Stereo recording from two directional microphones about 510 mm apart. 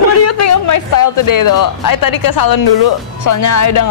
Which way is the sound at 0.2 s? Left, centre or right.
Left.